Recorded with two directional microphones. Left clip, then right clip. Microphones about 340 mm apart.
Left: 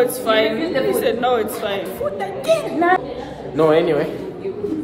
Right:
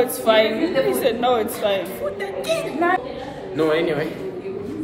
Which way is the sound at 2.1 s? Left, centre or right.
Centre.